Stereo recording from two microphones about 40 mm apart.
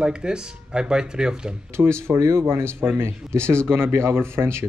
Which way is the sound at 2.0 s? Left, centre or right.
Right.